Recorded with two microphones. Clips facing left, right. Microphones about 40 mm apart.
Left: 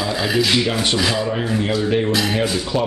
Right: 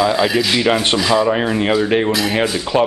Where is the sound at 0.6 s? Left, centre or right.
Right.